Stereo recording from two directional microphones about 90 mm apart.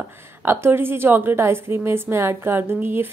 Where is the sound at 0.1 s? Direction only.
25° right (ahead or behind).